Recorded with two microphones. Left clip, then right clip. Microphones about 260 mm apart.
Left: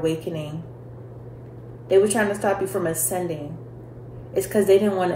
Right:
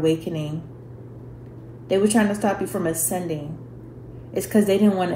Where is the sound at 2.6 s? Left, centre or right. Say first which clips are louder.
Even; right.